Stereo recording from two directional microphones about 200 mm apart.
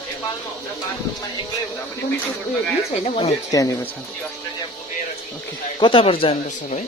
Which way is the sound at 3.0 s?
30° left (ahead or behind).